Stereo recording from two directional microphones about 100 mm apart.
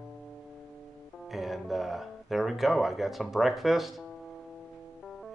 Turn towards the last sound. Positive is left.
turn(degrees=0)  # may be behind; listen again after turning